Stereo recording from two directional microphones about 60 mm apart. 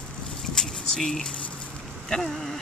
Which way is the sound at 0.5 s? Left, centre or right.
Centre.